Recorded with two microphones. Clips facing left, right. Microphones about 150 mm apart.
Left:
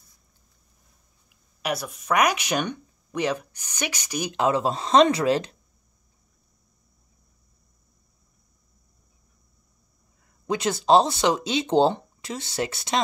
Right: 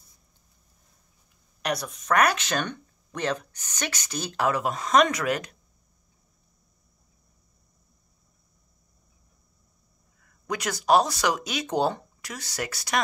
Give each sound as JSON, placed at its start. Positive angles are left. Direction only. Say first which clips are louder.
{"t": 1.6, "sound": "speech", "louder": "left 1 dB", "side_deg": 5}
{"t": 10.4, "sound": "speech", "louder": "left 4 dB", "side_deg": 25}